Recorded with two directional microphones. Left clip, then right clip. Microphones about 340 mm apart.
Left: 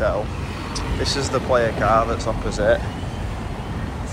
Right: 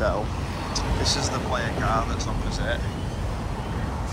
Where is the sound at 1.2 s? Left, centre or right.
Centre.